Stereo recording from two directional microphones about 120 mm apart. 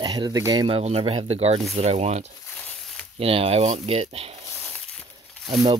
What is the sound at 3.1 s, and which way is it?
Speech, 55° right (ahead or behind).